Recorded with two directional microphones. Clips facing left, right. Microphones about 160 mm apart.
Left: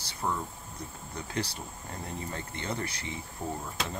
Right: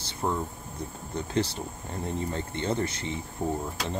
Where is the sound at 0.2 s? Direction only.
25° right (ahead or behind).